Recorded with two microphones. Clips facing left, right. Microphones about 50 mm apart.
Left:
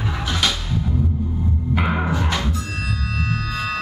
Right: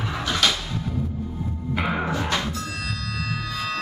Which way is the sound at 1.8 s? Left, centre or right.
Centre.